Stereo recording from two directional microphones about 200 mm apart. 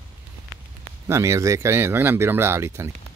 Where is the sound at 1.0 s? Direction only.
15° right (ahead or behind).